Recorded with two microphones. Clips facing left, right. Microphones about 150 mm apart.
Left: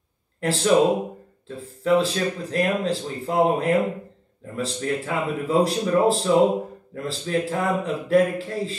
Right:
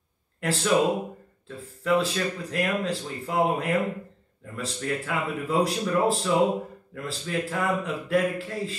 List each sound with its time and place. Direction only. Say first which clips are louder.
0.4 s speech: left 3 dB; 30° left (ahead or behind)
1.9 s speech: left 4 dB; 30° left (ahead or behind)